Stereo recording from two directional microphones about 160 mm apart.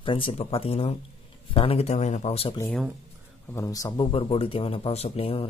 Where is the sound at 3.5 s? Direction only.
20° left (ahead or behind).